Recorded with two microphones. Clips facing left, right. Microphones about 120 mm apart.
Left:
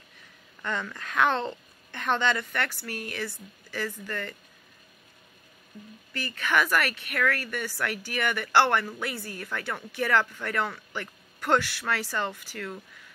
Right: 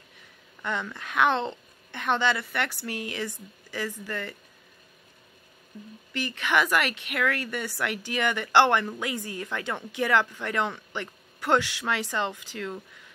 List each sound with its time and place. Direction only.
0.6 s a woman's voice: 15° right (ahead or behind)
6.1 s speech: 15° right (ahead or behind)